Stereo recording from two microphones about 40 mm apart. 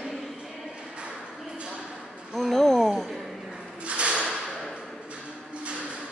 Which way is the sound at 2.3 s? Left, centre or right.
Centre.